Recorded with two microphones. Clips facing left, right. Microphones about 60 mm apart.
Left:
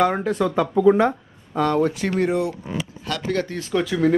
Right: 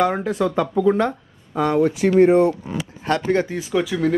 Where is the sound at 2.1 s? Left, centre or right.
Right.